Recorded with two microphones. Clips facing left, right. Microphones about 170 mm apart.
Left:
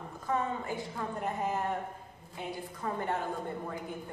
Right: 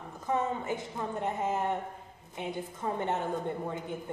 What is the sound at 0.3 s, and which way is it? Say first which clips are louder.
A woman's voice: right 2 dB; 20° right (ahead or behind).